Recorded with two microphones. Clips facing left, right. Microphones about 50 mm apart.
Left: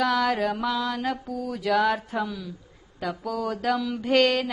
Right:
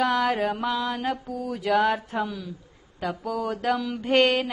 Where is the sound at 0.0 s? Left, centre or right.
Centre.